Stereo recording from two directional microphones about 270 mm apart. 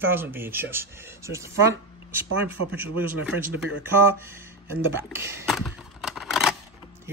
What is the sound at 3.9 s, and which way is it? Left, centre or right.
Speech, centre.